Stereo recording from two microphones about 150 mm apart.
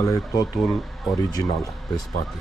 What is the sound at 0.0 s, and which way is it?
Speech, 20° left (ahead or behind).